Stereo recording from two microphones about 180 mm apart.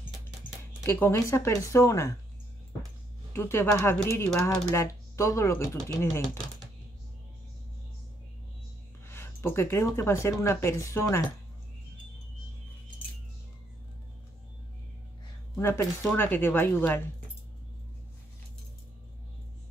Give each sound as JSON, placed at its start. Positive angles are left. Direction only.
{"t": 0.8, "sound": "speech", "side_deg": 15}
{"t": 3.3, "sound": "speech", "side_deg": 15}
{"t": 9.0, "sound": "speech", "side_deg": 15}
{"t": 15.5, "sound": "speech", "side_deg": 15}